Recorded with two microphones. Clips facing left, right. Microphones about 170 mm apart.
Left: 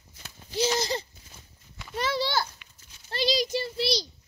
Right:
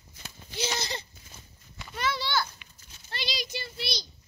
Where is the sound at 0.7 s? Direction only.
40° left (ahead or behind).